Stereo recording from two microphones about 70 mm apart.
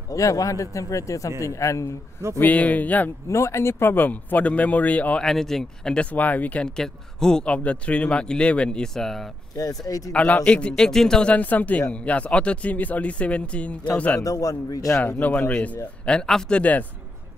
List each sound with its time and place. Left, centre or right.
0.1 s speech: left
2.4 s speech: left
3.3 s speech: left
5.2 s speech: centre
9.8 s a man's voice: left
10.1 s speech: centre
11.3 s speech: left
14.2 s a man's voice: left
15.0 s speech: left